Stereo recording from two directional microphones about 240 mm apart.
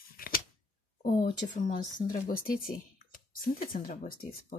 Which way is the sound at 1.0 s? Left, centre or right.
Left.